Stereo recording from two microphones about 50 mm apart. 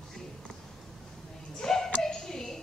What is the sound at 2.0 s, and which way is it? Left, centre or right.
Music, centre.